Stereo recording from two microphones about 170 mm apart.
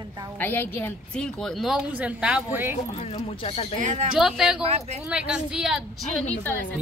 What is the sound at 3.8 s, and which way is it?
Speech, 45° right (ahead or behind).